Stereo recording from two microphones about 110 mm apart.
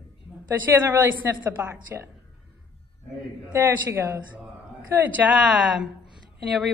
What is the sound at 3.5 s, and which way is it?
Speech, 25° right (ahead or behind).